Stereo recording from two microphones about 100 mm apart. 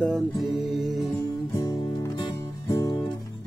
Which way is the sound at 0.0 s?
5° left (ahead or behind).